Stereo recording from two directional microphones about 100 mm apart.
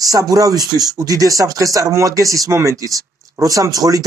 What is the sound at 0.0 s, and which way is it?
Speech, 35° right (ahead or behind).